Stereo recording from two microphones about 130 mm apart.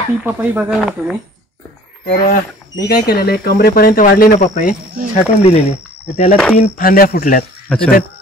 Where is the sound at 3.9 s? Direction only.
90° left; by 4.7 s 70° left (ahead or behind).